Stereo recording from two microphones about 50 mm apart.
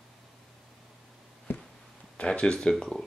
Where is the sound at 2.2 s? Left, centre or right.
Centre.